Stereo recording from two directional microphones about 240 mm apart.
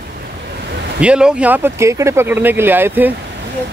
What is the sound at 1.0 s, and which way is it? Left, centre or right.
Speech, centre.